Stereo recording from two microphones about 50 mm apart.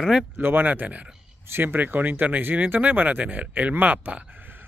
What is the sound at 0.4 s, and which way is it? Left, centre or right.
Speech, right.